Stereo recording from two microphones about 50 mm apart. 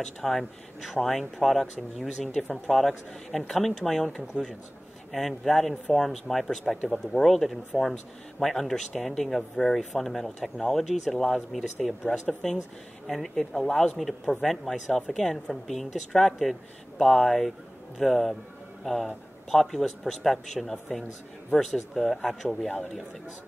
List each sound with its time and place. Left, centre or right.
0.0 s speech: centre
5.1 s speech: centre